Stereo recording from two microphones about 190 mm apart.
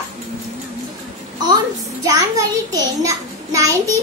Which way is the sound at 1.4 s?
20° right (ahead or behind).